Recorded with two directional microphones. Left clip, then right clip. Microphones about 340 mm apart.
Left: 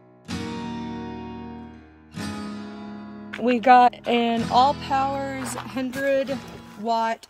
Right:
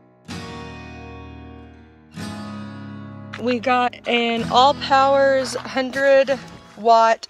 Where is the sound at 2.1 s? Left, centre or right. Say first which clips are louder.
Even; centre.